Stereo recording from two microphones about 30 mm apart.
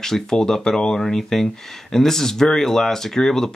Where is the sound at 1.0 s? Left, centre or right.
Centre.